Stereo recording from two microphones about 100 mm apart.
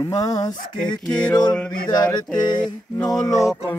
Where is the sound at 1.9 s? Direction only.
45° left (ahead or behind).